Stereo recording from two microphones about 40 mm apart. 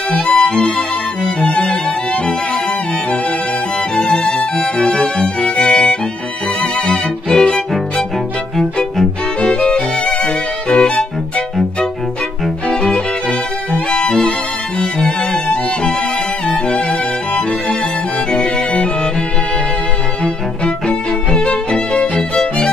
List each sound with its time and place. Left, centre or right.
0.1 s music: left
3.9 s music: left
9.5 s music: left
12.6 s violin: left
14.8 s music: left
18.3 s music: left
20.6 s music: left